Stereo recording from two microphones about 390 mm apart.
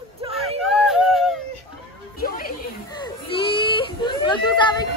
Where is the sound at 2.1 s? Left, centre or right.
Left.